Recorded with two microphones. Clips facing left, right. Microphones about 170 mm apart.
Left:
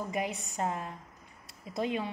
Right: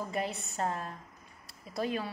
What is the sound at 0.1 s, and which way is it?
A woman's voice, 15° left (ahead or behind).